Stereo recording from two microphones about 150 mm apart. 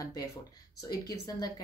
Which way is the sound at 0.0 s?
25° left (ahead or behind).